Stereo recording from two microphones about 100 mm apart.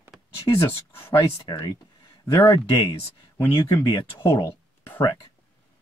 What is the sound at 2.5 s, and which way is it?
Speech, 45° left (ahead or behind).